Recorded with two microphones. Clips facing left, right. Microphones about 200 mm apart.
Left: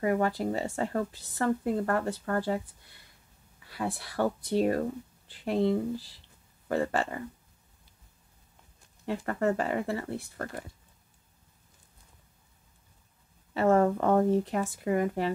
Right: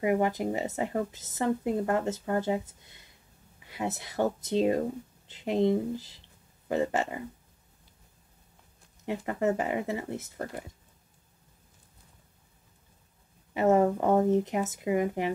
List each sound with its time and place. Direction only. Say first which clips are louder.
0.0 s speech: right 1 dB; 15° right (ahead or behind)
9.0 s a woman's voice: even; 15° right (ahead or behind)
13.5 s a woman's voice: even; 15° right (ahead or behind)